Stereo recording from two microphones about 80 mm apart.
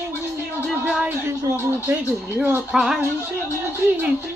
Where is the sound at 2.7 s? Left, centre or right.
Centre.